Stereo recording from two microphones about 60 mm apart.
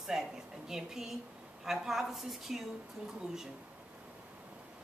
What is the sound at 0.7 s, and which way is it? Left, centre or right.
A woman's voice, centre.